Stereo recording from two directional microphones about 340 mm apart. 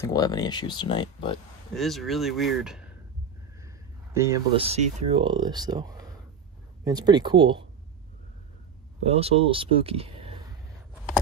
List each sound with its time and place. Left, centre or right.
0.0 s speech: centre
1.8 s speech: centre
9.0 s speech: centre